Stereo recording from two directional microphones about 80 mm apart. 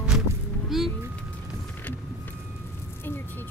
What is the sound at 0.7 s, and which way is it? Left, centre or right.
Speech, centre.